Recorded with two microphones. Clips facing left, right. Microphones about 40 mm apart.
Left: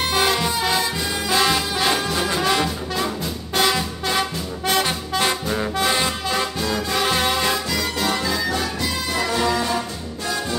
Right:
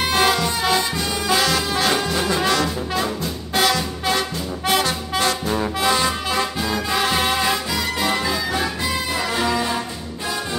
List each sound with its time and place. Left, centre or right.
0.0 s music: centre
1.4 s brass instrument: centre
1.9 s brass instrument: centre
5.5 s music: centre
5.9 s music: centre
6.3 s music: centre